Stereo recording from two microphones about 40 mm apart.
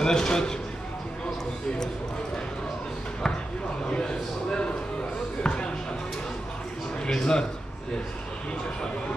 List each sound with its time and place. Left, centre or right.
0.0 s a man's voice: centre
3.9 s a sound: left
5.4 s music: left
7.1 s a man's voice: centre